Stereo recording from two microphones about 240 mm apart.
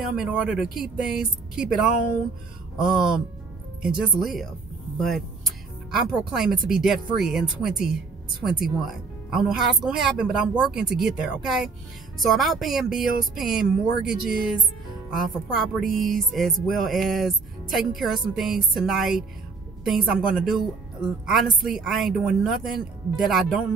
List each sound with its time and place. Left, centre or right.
0.2 s music: centre